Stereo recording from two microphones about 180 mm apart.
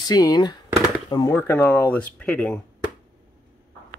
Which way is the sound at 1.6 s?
10° left (ahead or behind).